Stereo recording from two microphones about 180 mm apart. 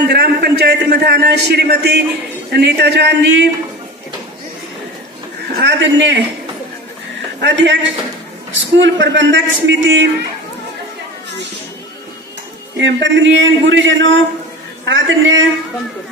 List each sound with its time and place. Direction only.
0.0 s a man's voice: 70° right (ahead or behind)
5.6 s a man's voice: 80° right
7.3 s a man's voice: 85° right
12.7 s a man's voice: 85° right